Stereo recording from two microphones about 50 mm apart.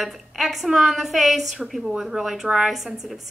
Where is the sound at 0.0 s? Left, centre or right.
Centre.